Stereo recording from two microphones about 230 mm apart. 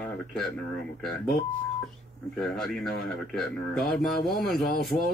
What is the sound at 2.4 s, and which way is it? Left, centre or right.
Speech, centre.